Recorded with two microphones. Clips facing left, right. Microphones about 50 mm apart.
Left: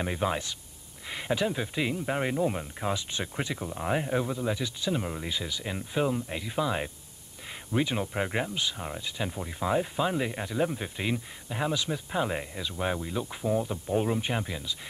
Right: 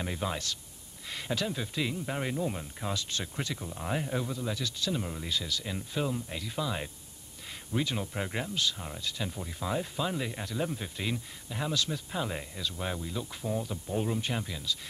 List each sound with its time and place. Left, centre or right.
0.0 s speech: left